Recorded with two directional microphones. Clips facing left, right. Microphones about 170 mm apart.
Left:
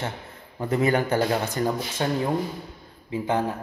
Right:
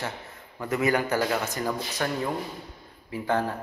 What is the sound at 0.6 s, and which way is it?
A man's voice, 30° left (ahead or behind).